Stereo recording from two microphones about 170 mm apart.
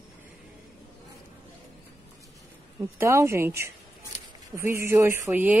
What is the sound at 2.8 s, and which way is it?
A woman's voice, 15° right (ahead or behind).